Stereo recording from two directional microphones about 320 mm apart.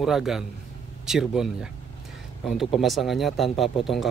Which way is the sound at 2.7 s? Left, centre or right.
Centre.